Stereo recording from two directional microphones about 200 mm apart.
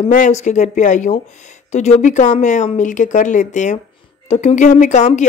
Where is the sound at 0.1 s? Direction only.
35° left (ahead or behind).